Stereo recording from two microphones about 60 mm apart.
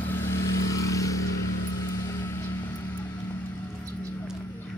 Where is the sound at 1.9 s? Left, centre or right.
Left.